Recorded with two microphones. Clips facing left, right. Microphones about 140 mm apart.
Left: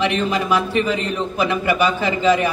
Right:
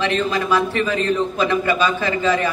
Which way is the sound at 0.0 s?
15° left (ahead or behind).